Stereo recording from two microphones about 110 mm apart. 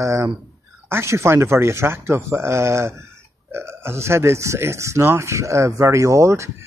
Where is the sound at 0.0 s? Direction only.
25° right (ahead or behind).